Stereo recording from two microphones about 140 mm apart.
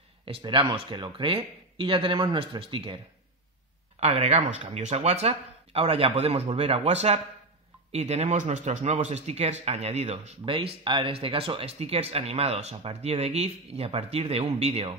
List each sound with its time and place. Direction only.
0.2 s speech: 40° right (ahead or behind)
4.0 s speech: 50° right (ahead or behind)